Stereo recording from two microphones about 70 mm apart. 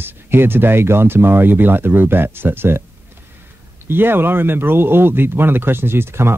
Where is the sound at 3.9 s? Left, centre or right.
Right.